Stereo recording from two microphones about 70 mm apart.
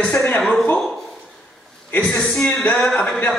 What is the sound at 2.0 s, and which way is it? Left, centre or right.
A man's voice, centre.